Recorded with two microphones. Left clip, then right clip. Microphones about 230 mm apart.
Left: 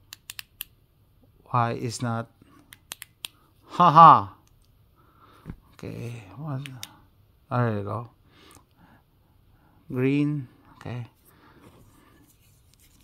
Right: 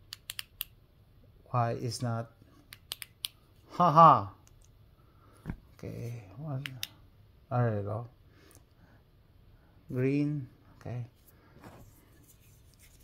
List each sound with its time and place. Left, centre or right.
0.1 s computer keyboard: left
1.5 s speech: left
2.7 s finger snapping: left
3.6 s speech: left
5.8 s speech: left
7.4 s a sound: left